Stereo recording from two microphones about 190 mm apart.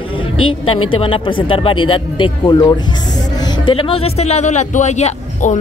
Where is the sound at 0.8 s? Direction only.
30° left (ahead or behind).